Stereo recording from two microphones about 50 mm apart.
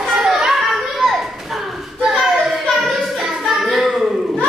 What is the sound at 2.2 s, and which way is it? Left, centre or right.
Child singing, centre.